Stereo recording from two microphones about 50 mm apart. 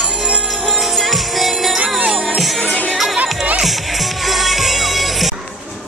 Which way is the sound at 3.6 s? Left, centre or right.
Centre.